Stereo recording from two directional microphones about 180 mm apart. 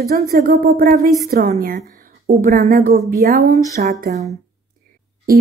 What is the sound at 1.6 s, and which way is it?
Speech, 50° right (ahead or behind).